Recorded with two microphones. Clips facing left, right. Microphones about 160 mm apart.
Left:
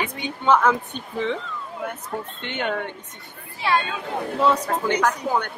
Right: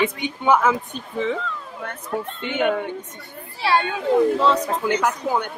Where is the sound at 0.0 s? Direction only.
25° right (ahead or behind).